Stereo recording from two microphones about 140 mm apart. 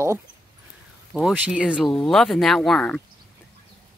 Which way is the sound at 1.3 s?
10° right (ahead or behind).